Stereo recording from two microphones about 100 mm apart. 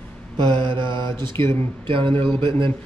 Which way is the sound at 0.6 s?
25° left (ahead or behind).